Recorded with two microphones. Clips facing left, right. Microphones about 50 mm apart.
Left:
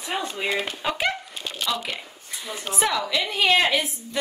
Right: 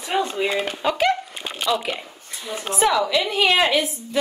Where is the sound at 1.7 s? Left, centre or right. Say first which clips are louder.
Right 7 dB; centre.